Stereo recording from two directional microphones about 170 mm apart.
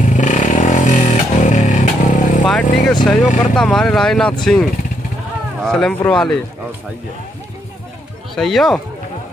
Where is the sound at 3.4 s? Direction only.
5° left (ahead or behind).